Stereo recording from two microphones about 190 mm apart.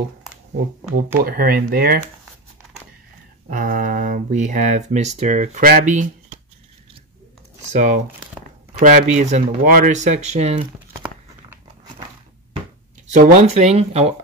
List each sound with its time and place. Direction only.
1.2 s speech: 50° right (ahead or behind)
3.4 s speech: 45° right (ahead or behind)
7.7 s speech: 40° right (ahead or behind)
8.4 s crumpling: 5° right (ahead or behind)
8.8 s speech: 40° right (ahead or behind)
13.1 s speech: 40° right (ahead or behind)